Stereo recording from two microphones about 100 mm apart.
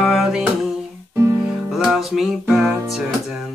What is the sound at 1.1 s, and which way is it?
Music, 25° right (ahead or behind).